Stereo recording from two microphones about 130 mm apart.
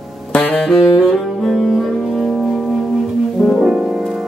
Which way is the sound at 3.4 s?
Centre (ahead or behind).